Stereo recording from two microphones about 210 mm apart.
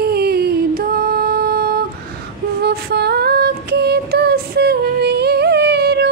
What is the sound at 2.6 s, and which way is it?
Female singing, 50° right (ahead or behind).